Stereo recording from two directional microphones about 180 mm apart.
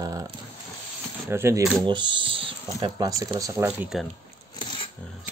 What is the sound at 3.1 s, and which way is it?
Speech, 20° right (ahead or behind).